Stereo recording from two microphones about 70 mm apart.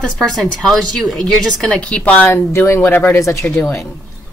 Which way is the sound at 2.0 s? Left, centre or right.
Left.